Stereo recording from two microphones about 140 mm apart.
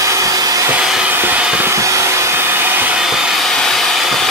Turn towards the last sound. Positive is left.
turn(degrees=0)  # may be behind; listen again after turning